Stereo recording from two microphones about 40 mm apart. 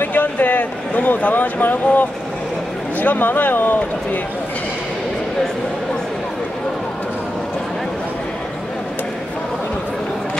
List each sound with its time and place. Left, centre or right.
0.0 s speech: left